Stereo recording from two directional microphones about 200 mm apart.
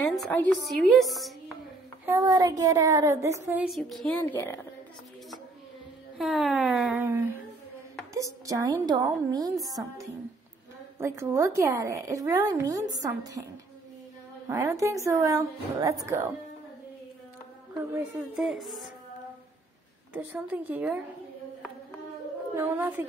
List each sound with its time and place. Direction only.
0.1 s a woman's voice: 5° left (ahead or behind)
2.0 s a woman's voice: 15° right (ahead or behind); by 4.2 s centre (ahead or behind)
4.2 s a woman's voice: 15° left (ahead or behind)
6.1 s a woman's voice: centre (ahead or behind)
8.5 s a woman's voice: 15° right (ahead or behind)
11.0 s a woman's voice: 15° right (ahead or behind)
14.5 s a woman's voice: 15° right (ahead or behind)
17.9 s a woman's voice: 5° right (ahead or behind)
20.1 s a woman's voice: 10° right (ahead or behind)
22.6 s a woman's voice: 10° right (ahead or behind)